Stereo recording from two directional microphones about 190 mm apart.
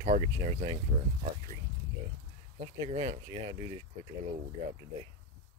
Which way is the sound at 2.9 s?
35° right (ahead or behind).